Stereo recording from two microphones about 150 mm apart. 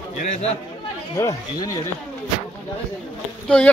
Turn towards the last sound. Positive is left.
turn(degrees=5)  # may be behind; listen again after turning